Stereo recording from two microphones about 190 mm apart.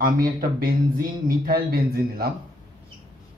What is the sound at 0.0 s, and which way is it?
Speech, 50° right (ahead or behind).